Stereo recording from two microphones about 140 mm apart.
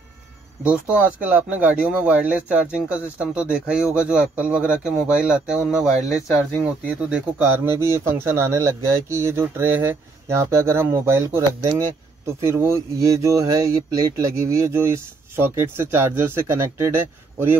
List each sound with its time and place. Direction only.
0.7 s speech: 10° right (ahead or behind)
7.1 s speech: 15° right (ahead or behind)